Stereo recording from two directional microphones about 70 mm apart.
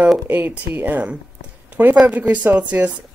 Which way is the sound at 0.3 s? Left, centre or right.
Right.